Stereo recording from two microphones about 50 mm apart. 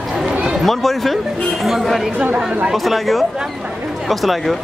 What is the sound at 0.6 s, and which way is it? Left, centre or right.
Speech, centre.